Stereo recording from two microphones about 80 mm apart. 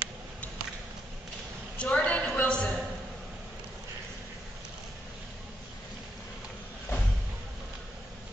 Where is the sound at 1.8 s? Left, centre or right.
Centre.